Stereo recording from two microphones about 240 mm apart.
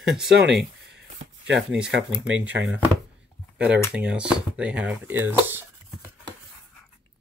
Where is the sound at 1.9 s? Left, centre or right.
Right.